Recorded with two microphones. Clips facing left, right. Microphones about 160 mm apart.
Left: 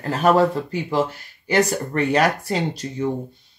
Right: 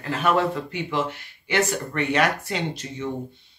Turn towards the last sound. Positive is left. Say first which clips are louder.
# left 5 dB
turn(degrees=40)  # may be behind; listen again after turning